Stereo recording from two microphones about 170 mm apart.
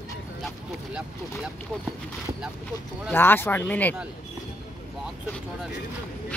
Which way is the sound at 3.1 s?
10° left (ahead or behind).